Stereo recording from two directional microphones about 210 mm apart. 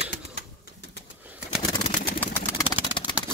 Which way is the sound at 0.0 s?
55° left (ahead or behind).